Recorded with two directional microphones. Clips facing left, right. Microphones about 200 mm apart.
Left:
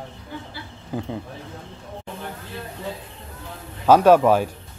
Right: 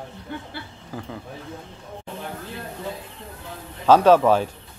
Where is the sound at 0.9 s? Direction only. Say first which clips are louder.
Left 6 dB; 20° left (ahead or behind).